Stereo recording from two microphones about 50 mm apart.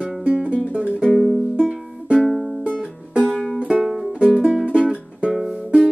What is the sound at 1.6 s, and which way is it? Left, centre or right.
Music, centre.